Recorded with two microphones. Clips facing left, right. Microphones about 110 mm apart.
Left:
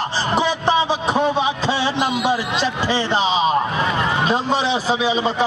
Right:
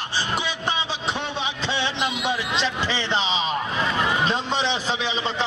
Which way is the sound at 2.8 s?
40° left (ahead or behind).